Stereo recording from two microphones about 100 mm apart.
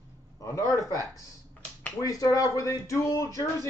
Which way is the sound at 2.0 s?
35° left (ahead or behind).